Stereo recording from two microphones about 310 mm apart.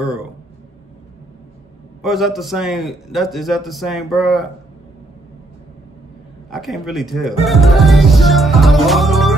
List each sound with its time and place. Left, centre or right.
2.0 s a man's voice: centre
6.5 s speech: centre